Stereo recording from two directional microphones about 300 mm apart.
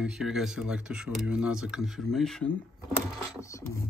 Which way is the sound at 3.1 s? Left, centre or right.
Centre.